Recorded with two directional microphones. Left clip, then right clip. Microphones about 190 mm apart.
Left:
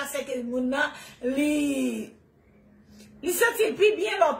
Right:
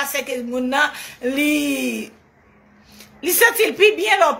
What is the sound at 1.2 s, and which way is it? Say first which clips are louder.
Speech: right 6 dB; 15° left (ahead or behind).